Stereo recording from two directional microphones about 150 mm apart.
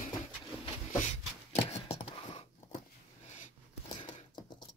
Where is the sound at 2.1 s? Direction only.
40° left (ahead or behind).